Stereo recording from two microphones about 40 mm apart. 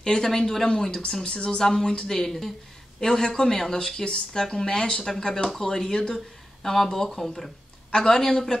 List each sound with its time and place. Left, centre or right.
0.0 s speech: centre
1.2 s speech: left